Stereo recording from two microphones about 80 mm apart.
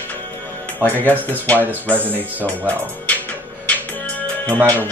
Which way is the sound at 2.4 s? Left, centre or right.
Centre.